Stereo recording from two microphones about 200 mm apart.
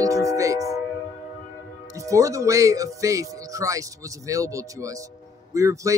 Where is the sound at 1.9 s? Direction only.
15° right (ahead or behind).